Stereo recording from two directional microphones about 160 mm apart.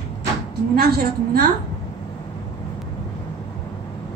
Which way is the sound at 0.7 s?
70° right (ahead or behind).